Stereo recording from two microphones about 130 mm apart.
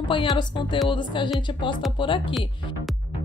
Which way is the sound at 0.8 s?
35° left (ahead or behind).